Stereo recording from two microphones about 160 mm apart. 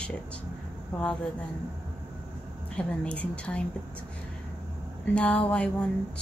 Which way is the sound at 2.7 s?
5° left (ahead or behind).